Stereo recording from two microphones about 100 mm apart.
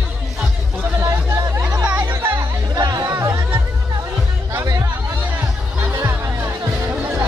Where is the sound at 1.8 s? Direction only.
15° right (ahead or behind).